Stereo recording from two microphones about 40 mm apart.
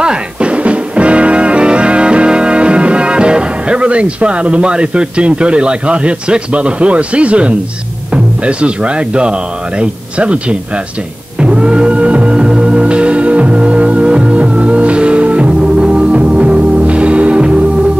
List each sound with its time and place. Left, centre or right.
0.0 s music: right
8.1 s speech: right
11.3 s music: right